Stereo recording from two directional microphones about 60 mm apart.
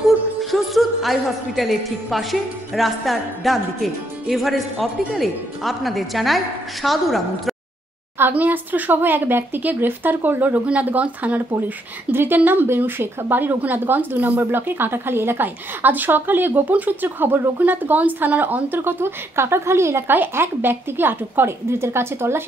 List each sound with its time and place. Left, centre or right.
0.4 s a woman's voice: centre
8.3 s a woman's voice: right
12.1 s speech: right
20.1 s a woman's voice: right